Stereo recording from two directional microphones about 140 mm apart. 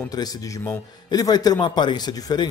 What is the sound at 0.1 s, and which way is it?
A man's voice, 25° left (ahead or behind).